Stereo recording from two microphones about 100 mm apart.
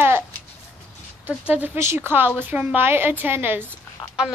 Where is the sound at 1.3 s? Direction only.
15° right (ahead or behind).